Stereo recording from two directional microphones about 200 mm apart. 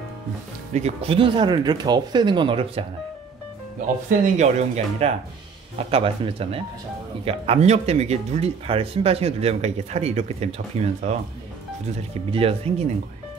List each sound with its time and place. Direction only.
0.7 s speech: 30° right (ahead or behind)
4.4 s speech: 35° right (ahead or behind)
12.3 s speech: 30° right (ahead or behind)